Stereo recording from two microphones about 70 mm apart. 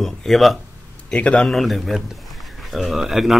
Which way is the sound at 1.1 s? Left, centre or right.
Centre.